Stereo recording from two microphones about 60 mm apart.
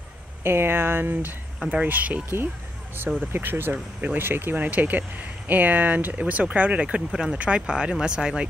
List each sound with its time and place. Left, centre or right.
0.4 s speech: right
1.6 s speech: centre
3.3 s speech: right; by 8.5 s centre